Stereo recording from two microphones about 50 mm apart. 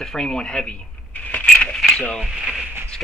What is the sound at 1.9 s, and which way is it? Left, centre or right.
Speech, centre.